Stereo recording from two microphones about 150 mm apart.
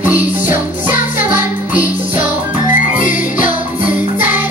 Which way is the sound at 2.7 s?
60° left (ahead or behind).